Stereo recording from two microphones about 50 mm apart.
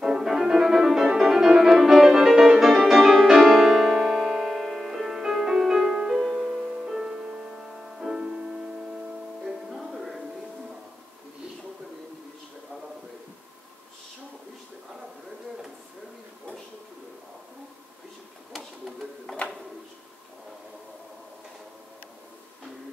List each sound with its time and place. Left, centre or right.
0.0 s music: centre
9.4 s music: centre
19.3 s music: centre